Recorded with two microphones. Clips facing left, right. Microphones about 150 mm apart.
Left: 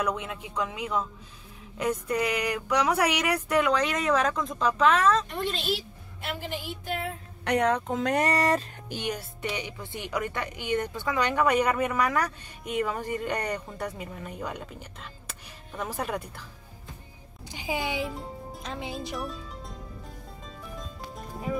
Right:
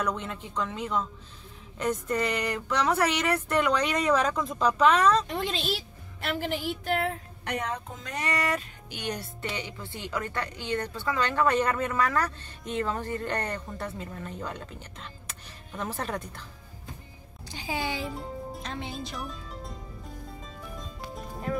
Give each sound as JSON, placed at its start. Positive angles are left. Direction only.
{"t": 0.0, "sound": "speech", "side_deg": 5}
{"t": 6.2, "sound": "speech", "side_deg": -90}
{"t": 7.4, "sound": "speech", "side_deg": 75}
{"t": 8.2, "sound": "speech", "side_deg": 35}
{"t": 9.0, "sound": "speech", "side_deg": 15}
{"t": 17.5, "sound": "speech", "side_deg": 15}
{"t": 18.0, "sound": "music", "side_deg": 0}